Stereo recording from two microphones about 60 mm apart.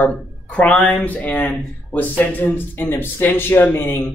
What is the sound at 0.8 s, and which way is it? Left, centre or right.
Speech, left.